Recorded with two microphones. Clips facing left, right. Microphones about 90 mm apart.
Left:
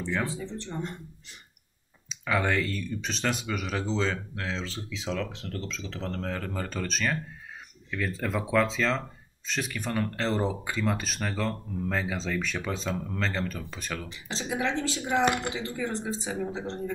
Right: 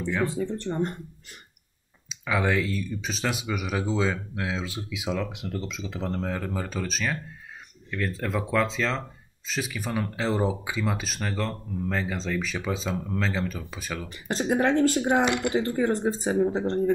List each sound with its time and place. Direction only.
0.0 s speech: 5° right (ahead or behind)
0.3 s speech: 55° right (ahead or behind)
2.0 s speech: centre (ahead or behind)
14.0 s speech: 50° right (ahead or behind)
15.2 s speech: 45° left (ahead or behind)
15.5 s speech: 45° right (ahead or behind)